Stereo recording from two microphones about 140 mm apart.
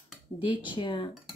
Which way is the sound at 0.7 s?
35° left (ahead or behind).